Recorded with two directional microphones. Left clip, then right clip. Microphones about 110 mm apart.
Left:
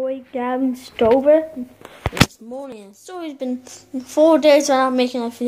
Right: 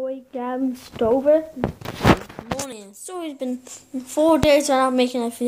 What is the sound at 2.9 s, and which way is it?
Speech, 15° right (ahead or behind).